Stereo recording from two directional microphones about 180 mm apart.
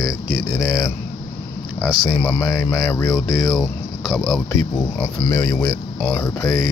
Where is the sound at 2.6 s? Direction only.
15° left (ahead or behind).